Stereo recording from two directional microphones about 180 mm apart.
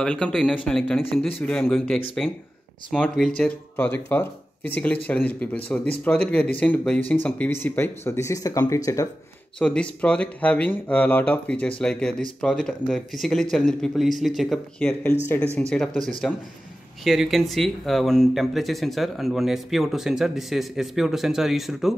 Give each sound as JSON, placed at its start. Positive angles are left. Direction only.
{"t": 0.0, "sound": "speech", "side_deg": 5}
{"t": 9.6, "sound": "speech", "side_deg": 5}